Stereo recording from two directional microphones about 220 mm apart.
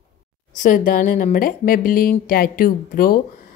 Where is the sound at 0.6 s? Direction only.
35° left (ahead or behind).